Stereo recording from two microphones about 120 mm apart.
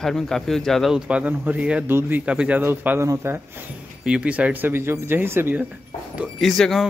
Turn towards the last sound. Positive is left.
turn(degrees=0)  # may be behind; listen again after turning